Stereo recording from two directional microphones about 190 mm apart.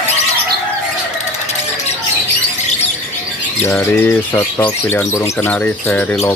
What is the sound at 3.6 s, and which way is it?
Speech, 10° left (ahead or behind).